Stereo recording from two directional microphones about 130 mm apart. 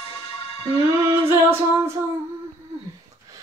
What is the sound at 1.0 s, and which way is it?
Singing, 20° right (ahead or behind).